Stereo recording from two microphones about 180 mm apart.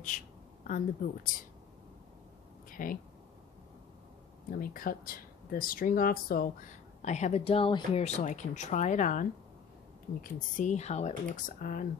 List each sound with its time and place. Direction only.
0.1 s speech: 45° left (ahead or behind)
2.7 s speech: 50° left (ahead or behind)
4.5 s speech: 55° left (ahead or behind)
7.0 s speech: 40° left (ahead or behind)